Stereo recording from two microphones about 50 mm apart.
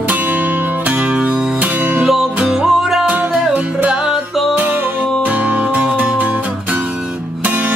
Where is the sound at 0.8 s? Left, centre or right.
Right.